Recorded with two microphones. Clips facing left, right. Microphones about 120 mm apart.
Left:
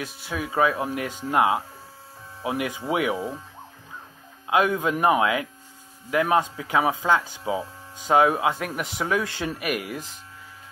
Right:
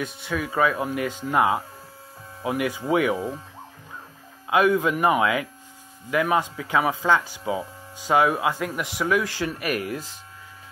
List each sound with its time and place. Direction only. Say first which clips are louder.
0.4 s speech: even; 20° left (ahead or behind)
4.5 s speech: right 2 dB; 25° left (ahead or behind)